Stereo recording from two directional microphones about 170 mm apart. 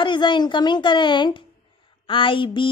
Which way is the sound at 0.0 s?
30° left (ahead or behind).